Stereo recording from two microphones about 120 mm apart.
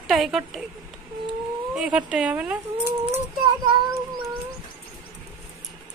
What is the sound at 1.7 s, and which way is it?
Speech, 10° right (ahead or behind).